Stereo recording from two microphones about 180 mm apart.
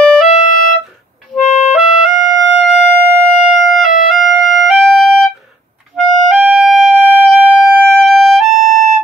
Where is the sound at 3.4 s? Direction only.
Centre (ahead or behind).